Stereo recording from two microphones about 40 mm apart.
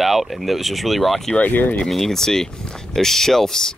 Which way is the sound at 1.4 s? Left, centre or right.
Left.